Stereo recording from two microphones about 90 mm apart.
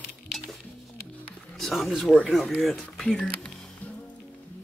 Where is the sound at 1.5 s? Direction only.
5° left (ahead or behind).